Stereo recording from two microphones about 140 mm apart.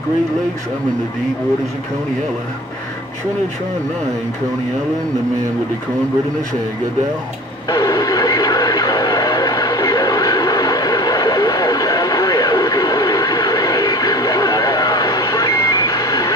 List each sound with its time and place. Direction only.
7.7 s radio: 25° left (ahead or behind)